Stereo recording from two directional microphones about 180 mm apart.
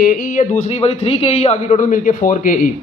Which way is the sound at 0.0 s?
50° left (ahead or behind).